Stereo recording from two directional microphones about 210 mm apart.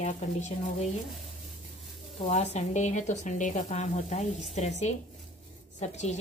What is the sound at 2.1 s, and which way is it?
Speech, 35° left (ahead or behind).